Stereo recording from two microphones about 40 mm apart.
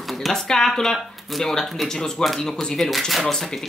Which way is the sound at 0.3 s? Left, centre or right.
Centre.